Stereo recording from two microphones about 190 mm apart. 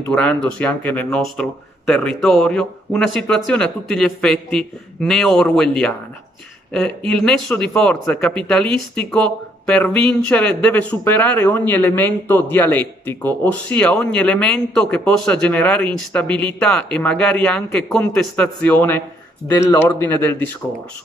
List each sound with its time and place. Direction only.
0.1 s speech: 5° left (ahead or behind)
7.2 s speech: 5° left (ahead or behind)
19.5 s speech: 20° left (ahead or behind)
19.8 s speech: 10° left (ahead or behind)